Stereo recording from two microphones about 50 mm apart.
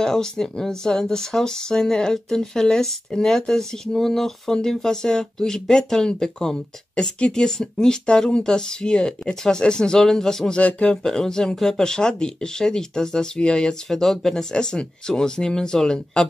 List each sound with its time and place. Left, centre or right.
0.0 s speech: centre
10.6 s speech: left
11.1 s speech: centre